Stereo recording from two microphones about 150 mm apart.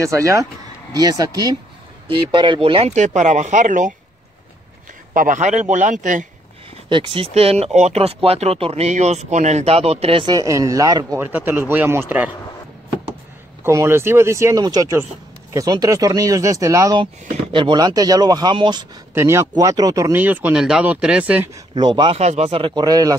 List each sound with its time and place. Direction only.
0.0 s speech: 20° right (ahead or behind); by 3.9 s 60° right (ahead or behind)
5.1 s speech: 60° right (ahead or behind)
6.9 s speech: 35° right (ahead or behind)
11.2 s speech: 15° right (ahead or behind)
13.7 s speech: 15° right (ahead or behind)
17.5 s speech: 30° right (ahead or behind)
19.1 s speech: 20° right (ahead or behind)
21.7 s speech: 30° right (ahead or behind)
22.2 s speech: 45° right (ahead or behind); by 23.1 s 25° right (ahead or behind)